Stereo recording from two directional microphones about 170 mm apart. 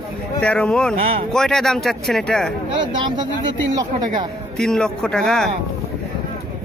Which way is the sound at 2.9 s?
25° right (ahead or behind).